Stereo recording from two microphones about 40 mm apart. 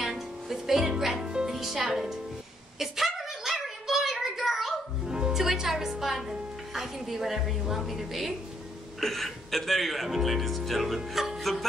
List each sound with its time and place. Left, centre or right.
0.0 s music: centre
1.2 s music: centre
1.5 s a woman's voice: centre
2.8 s a sound: centre
5.3 s music: centre
9.0 s speech: centre
11.1 s music: centre